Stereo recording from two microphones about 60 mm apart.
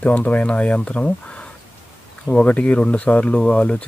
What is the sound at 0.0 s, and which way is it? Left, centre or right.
Speech, left.